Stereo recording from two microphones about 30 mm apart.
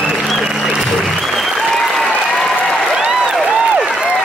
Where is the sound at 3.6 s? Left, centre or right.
Right.